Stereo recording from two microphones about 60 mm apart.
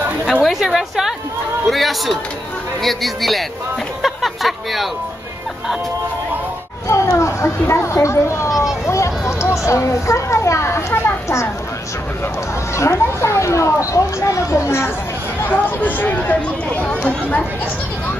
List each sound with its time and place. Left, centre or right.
0.4 s a woman's voice: centre
4.0 s a sound: centre
6.9 s children playing: left
7.4 s speech: left
8.5 s speech: left
8.8 s a sound: left
9.7 s a child's voice: left
12.7 s speech: left
15.4 s speech: left
17.0 s speech: centre